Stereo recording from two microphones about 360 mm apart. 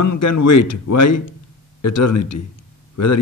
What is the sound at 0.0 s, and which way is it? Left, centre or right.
A man's voice, left.